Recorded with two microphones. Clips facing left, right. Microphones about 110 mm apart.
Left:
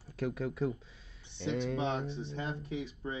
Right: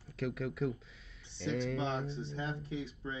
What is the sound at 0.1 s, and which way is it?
Speech, 35° left (ahead or behind).